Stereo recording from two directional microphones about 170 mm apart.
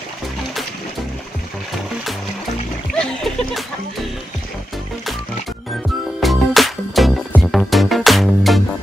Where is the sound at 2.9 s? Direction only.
5° left (ahead or behind).